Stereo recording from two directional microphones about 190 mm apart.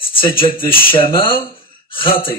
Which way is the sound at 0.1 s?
30° left (ahead or behind).